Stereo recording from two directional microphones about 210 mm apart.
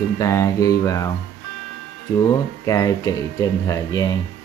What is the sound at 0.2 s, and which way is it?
Speech, 15° left (ahead or behind).